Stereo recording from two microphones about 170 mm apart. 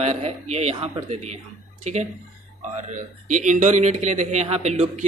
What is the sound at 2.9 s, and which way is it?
A man's voice, 45° right (ahead or behind).